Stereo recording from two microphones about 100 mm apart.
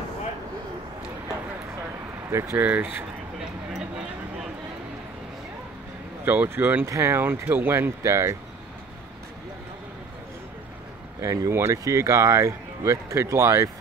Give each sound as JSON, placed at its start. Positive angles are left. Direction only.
{"t": 2.5, "sound": "speech", "side_deg": -15}
{"t": 6.2, "sound": "speech", "side_deg": -20}
{"t": 11.1, "sound": "speech", "side_deg": -30}